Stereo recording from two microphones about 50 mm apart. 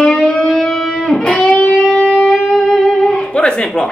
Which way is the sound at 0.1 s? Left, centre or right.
Centre.